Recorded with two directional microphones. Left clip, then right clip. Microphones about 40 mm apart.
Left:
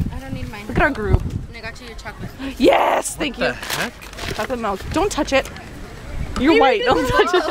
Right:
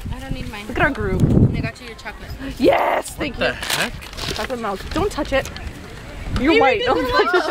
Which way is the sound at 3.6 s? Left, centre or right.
Right.